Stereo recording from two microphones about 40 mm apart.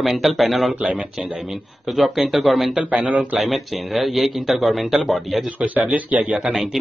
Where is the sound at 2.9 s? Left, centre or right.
Right.